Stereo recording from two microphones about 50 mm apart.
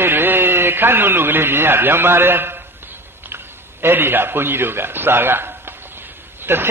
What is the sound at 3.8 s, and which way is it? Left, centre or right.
A man's voice, right.